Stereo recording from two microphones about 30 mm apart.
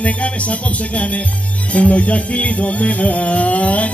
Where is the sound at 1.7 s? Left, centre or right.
Left.